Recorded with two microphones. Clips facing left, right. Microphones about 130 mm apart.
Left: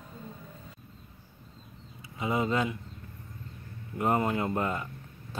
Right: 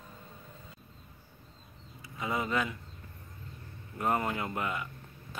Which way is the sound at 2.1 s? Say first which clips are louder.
Left 4 dB; 20° left (ahead or behind).